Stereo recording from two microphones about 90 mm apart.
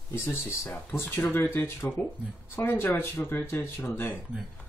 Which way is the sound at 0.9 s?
25° left (ahead or behind).